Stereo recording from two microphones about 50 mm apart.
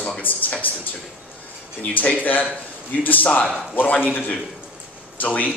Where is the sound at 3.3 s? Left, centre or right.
Left.